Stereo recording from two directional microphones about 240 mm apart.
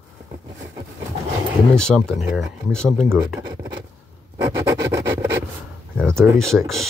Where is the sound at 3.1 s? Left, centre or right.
Centre.